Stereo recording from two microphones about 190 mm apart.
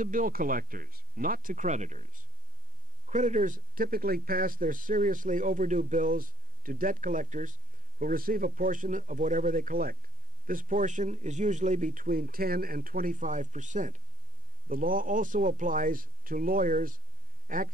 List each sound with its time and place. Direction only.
0.0 s speech: 45° right (ahead or behind)